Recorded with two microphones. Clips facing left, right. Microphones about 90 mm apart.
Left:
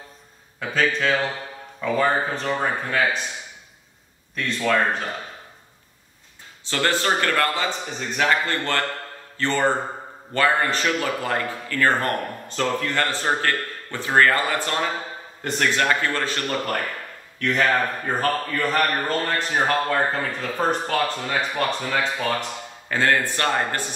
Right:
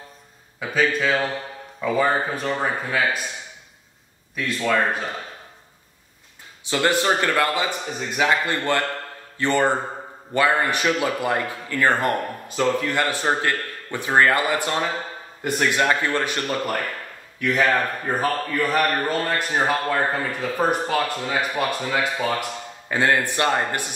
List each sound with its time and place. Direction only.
0.6 s a man's voice: 5° right (ahead or behind)
4.4 s speech: 5° right (ahead or behind)
6.6 s a man's voice: 15° right (ahead or behind)